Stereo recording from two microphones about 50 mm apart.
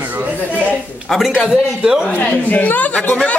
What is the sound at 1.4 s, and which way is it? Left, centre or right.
Speech, centre.